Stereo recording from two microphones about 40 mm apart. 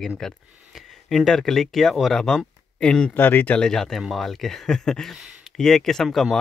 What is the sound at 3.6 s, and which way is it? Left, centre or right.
Speech, centre.